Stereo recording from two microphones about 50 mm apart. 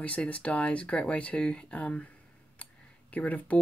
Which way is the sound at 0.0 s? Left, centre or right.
Left.